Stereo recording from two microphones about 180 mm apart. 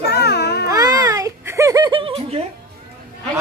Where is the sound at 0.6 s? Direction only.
20° right (ahead or behind).